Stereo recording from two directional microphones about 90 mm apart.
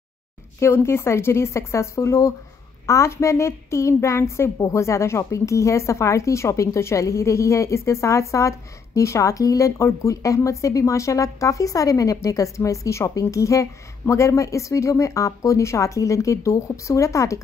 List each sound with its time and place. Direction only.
0.6 s a woman's voice: 30° left (ahead or behind)